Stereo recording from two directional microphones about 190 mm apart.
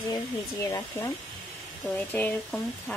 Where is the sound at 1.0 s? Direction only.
15° left (ahead or behind).